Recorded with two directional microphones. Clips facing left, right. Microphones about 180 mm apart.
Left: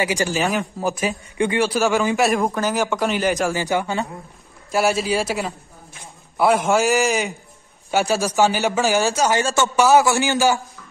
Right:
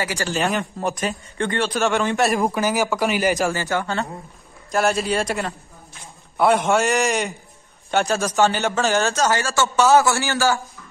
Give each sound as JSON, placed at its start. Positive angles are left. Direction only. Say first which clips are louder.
{"t": 0.0, "sound": "a man's voice", "louder": "left 4 dB", "side_deg": 15}
{"t": 0.3, "sound": "a man's voice", "louder": "left 1 dB", "side_deg": 0}
{"t": 3.5, "sound": "a man's voice", "louder": "left 2 dB", "side_deg": 15}
{"t": 4.6, "sound": "a man's voice", "louder": "left 1 dB", "side_deg": 5}